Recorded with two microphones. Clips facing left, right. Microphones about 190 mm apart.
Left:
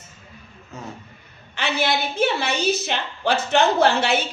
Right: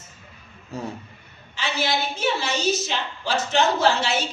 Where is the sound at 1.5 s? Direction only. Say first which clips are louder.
Left 3 dB; 60° left (ahead or behind).